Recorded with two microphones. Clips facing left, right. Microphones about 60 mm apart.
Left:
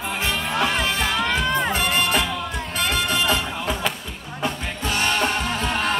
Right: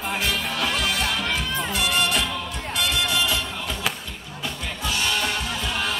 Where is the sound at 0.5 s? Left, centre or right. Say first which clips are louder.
Left 3 dB; left.